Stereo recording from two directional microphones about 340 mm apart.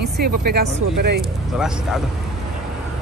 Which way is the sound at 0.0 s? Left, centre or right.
Right.